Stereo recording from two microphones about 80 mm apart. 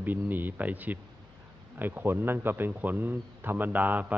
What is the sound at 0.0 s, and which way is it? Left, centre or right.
Speech, right.